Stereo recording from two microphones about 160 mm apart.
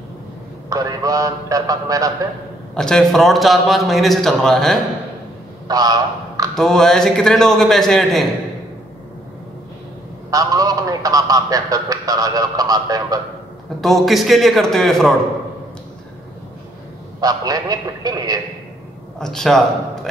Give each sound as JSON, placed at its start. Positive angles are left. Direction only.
{"t": 0.7, "sound": "a man's voice", "side_deg": -20}
{"t": 2.7, "sound": "a man's voice", "side_deg": 5}
{"t": 5.7, "sound": "a sound", "side_deg": -25}
{"t": 6.5, "sound": "a man's voice", "side_deg": 5}
{"t": 10.3, "sound": "a man's voice", "side_deg": -20}
{"t": 13.7, "sound": "a man's voice", "side_deg": 0}
{"t": 17.2, "sound": "a man's voice", "side_deg": -25}
{"t": 19.1, "sound": "a man's voice", "side_deg": 5}